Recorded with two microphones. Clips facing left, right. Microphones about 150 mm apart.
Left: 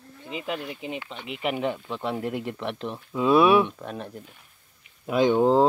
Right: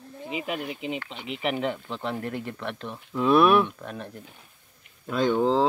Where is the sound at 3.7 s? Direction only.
15° left (ahead or behind).